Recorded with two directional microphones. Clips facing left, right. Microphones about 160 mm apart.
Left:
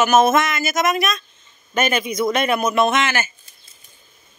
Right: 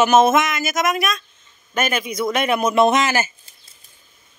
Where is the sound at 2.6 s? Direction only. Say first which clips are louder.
Right 2 dB; 30° right (ahead or behind).